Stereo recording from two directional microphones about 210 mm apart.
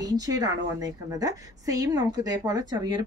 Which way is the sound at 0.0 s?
15° right (ahead or behind).